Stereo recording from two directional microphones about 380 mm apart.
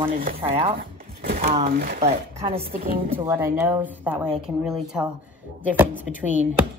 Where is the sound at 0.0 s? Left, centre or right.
Right.